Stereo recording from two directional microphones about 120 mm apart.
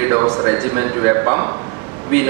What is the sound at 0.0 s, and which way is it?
A man's voice, 25° right (ahead or behind).